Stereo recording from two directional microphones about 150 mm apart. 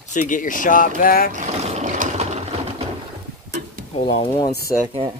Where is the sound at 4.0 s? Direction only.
35° left (ahead or behind).